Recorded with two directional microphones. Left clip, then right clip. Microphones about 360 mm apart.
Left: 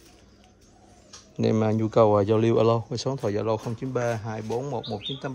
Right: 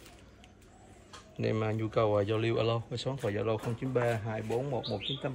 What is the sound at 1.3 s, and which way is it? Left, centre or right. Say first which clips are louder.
Speech: left 8 dB; centre.